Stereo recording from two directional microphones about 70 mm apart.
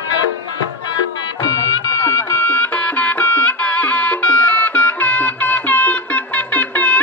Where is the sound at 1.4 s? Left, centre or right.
Left.